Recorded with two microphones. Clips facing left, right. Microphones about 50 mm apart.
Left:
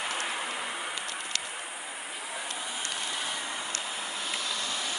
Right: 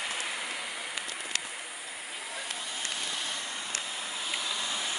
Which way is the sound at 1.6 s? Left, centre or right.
Left.